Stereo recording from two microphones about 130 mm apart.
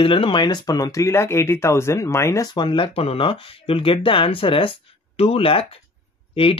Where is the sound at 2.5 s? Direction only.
40° left (ahead or behind).